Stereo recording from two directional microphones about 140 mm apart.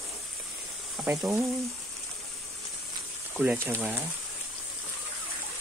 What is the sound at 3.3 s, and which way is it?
Speech, 15° right (ahead or behind).